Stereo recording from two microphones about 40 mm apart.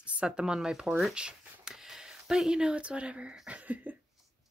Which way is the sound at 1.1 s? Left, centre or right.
Right.